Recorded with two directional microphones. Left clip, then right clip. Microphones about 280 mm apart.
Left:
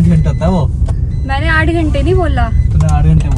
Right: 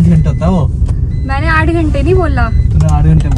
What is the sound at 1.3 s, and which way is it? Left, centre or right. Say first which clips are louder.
Speech: right 1 dB; centre.